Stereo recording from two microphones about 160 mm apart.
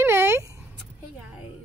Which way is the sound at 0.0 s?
15° right (ahead or behind).